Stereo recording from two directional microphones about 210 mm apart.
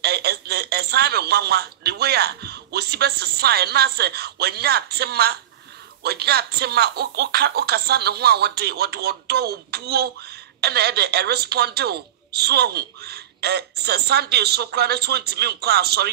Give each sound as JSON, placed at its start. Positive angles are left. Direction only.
{"t": 0.0, "sound": "a woman's voice", "side_deg": -50}